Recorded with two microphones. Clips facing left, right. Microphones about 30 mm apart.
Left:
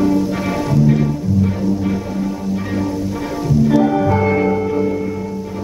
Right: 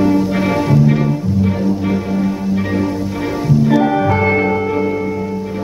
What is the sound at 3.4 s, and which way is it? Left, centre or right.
Music, right.